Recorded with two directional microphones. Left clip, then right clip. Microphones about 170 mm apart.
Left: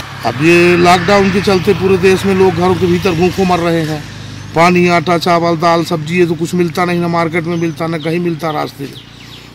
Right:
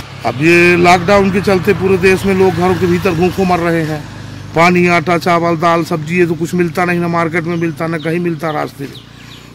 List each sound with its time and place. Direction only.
0.5 s a man's voice: centre (ahead or behind)
2.3 s speech: 30° right (ahead or behind)
3.3 s a man's voice: centre (ahead or behind)